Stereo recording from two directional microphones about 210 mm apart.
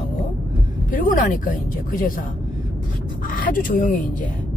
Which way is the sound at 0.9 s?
40° left (ahead or behind).